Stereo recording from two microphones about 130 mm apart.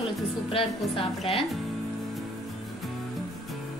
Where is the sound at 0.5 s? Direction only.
45° left (ahead or behind).